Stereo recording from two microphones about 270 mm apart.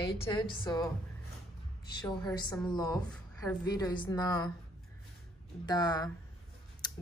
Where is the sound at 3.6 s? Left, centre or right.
Centre.